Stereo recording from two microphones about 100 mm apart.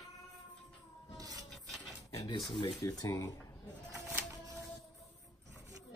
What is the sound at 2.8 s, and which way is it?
Speech, 35° left (ahead or behind).